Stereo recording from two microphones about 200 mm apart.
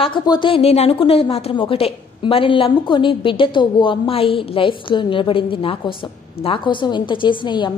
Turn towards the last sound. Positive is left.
turn(degrees=25)  # may be behind; listen again after turning